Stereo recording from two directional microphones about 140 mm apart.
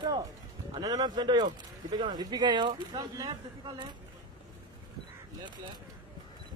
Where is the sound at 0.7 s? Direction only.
30° right (ahead or behind).